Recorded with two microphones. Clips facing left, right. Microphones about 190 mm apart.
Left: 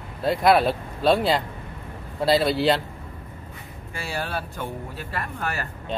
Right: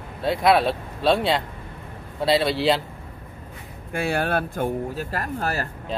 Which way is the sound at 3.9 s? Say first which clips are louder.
Right 7 dB; 55° right (ahead or behind).